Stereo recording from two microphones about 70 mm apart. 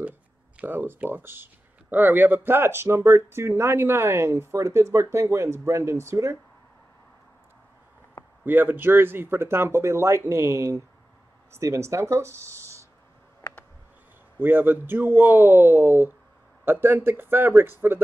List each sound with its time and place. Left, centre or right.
0.6 s speech: right
8.5 s speech: right
13.4 s a sound: left
14.4 s speech: right